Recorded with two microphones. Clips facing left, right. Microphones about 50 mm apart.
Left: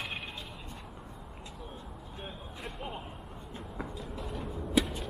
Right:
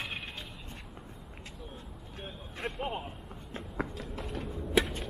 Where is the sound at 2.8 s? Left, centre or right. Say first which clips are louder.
Right 5 dB; right.